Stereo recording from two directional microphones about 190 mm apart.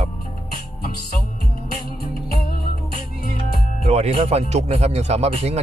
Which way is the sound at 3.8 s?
35° right (ahead or behind).